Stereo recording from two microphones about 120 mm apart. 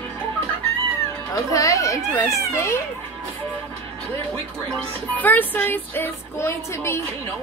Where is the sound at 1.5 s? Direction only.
25° left (ahead or behind).